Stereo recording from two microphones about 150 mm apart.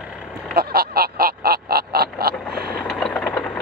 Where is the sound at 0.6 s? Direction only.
90° right.